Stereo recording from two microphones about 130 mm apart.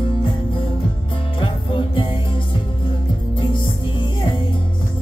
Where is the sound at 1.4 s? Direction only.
40° left (ahead or behind).